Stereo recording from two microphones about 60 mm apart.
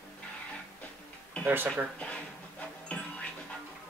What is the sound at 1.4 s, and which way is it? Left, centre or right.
Speech, right.